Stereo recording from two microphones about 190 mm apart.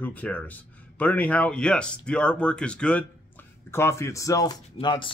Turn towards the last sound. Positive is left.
turn(degrees=25)  # may be behind; listen again after turning